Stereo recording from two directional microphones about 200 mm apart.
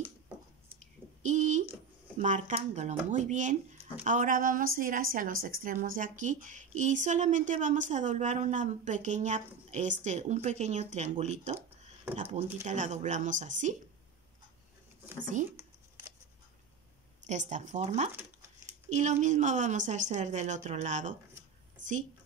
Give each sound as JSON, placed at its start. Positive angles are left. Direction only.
{"t": 1.2, "sound": "a sound", "side_deg": -35}
{"t": 2.1, "sound": "a woman's voice", "side_deg": -35}
{"t": 17.3, "sound": "a woman's voice", "side_deg": -35}